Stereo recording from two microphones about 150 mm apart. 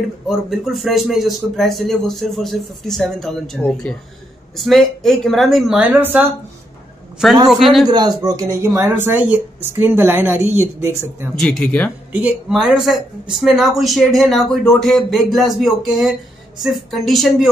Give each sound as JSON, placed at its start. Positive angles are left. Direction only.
{"t": 0.3, "sound": "a man's voice", "side_deg": 0}
{"t": 7.4, "sound": "a man's voice", "side_deg": 0}
{"t": 8.4, "sound": "speech", "side_deg": -20}
{"t": 11.3, "sound": "speech", "side_deg": 5}
{"t": 12.1, "sound": "a man's voice", "side_deg": -10}